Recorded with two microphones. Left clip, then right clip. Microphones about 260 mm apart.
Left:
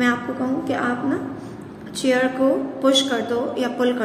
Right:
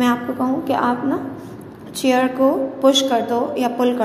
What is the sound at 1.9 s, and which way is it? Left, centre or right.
A woman's voice, centre.